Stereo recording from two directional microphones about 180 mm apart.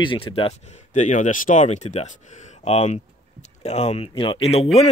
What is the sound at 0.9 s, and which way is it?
Speech, 45° left (ahead or behind).